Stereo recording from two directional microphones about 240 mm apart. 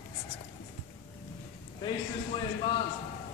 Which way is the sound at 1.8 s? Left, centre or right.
Left.